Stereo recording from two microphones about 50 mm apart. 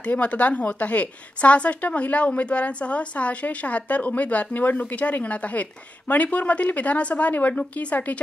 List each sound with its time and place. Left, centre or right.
0.0 s a woman's voice: left